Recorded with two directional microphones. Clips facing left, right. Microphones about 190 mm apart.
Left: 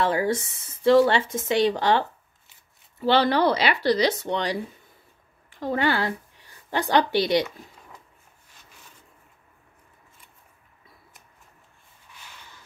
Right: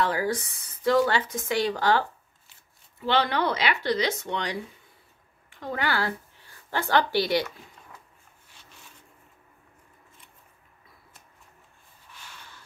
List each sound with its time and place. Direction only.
0.0 s speech: 25° left (ahead or behind)
3.0 s speech: 35° left (ahead or behind)
5.6 s speech: 25° left (ahead or behind)
12.3 s a sound: 15° left (ahead or behind)